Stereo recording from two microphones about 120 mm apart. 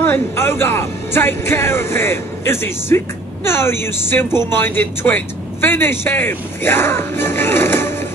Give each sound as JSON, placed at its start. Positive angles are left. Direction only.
{"t": 0.0, "sound": "speech", "side_deg": 20}